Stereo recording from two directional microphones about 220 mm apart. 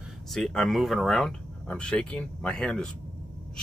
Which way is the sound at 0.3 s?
Centre (ahead or behind).